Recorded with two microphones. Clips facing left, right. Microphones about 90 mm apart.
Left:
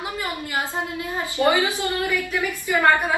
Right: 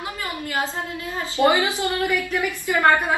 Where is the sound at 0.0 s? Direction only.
20° left (ahead or behind).